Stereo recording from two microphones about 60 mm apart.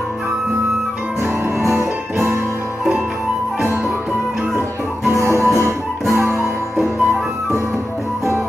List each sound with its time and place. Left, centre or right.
5.2 s music: right